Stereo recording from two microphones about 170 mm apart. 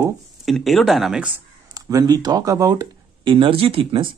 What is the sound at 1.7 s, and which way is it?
Speech, 20° right (ahead or behind).